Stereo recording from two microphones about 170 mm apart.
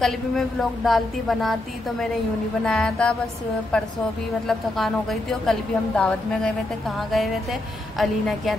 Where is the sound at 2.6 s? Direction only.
5° left (ahead or behind).